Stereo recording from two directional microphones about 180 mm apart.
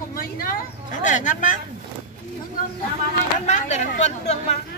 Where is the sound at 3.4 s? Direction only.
40° left (ahead or behind).